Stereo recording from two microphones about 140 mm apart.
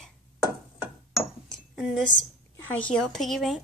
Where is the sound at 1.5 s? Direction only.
5° left (ahead or behind).